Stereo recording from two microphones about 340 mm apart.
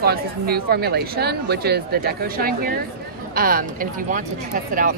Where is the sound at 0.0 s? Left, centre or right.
Right.